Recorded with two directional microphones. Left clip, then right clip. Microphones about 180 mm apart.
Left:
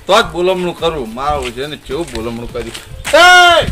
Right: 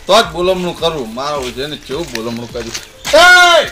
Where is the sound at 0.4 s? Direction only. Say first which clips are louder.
Even; centre (ahead or behind).